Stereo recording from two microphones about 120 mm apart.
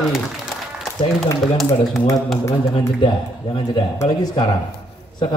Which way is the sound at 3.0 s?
40° left (ahead or behind).